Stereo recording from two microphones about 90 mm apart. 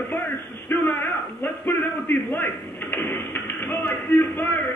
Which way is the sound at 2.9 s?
25° left (ahead or behind).